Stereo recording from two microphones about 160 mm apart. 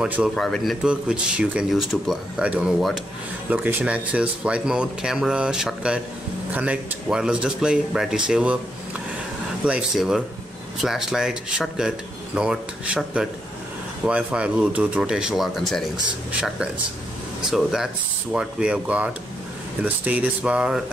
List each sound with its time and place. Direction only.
0.0 s speech: 5° right (ahead or behind)
9.7 s speech: 5° right (ahead or behind)